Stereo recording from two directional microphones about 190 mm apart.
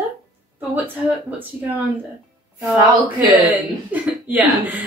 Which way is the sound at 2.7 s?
20° right (ahead or behind).